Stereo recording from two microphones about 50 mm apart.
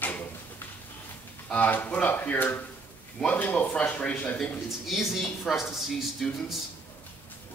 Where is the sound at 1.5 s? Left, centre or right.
Left.